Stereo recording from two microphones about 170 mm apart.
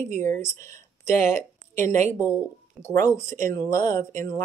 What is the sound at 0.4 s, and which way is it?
Speech, 15° left (ahead or behind).